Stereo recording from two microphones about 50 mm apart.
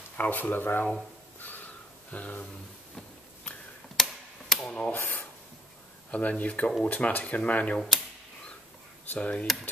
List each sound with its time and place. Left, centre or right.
0.2 s speech: left
2.0 s speech: left
3.9 s tick-tock: centre
4.6 s mechanisms: centre
6.1 s speech: left
9.1 s speech: left